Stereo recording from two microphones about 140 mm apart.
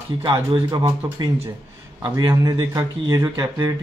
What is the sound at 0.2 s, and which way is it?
Speech, 35° right (ahead or behind).